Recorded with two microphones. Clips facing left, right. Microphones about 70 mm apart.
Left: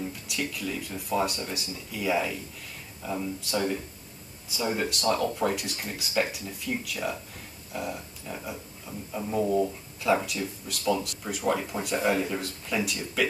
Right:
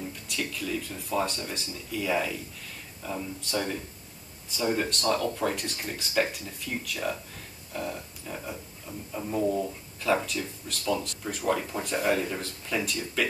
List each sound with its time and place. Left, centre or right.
0.4 s speech: centre
7.7 s a sound: centre
9.1 s speech: centre
10.1 s speech: centre
10.9 s speech: centre